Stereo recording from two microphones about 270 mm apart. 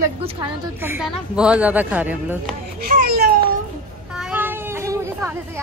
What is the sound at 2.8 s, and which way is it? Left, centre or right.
Babbling, right.